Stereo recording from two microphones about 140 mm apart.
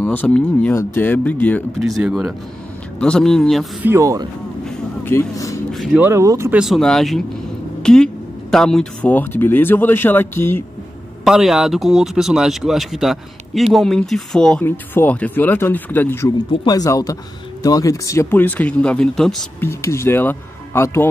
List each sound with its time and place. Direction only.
0.0 s speech: 10° left (ahead or behind)
1.8 s speech: centre (ahead or behind)
3.8 s speech: 20° right (ahead or behind)
5.0 s speech: 20° left (ahead or behind)
5.7 s a sound: centre (ahead or behind)
5.9 s speech: 20° right (ahead or behind)
6.5 s speech: centre (ahead or behind); by 10.6 s 15° left (ahead or behind)
11.2 s speech: 5° right (ahead or behind); by 16.3 s 15° left (ahead or behind)
16.6 s speech: 25° left (ahead or behind); by 19.3 s 5° left (ahead or behind)
19.6 s speech: 20° left (ahead or behind)